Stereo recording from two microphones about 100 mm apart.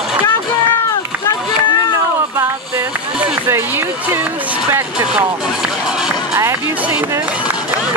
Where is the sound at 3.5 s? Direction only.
20° right (ahead or behind).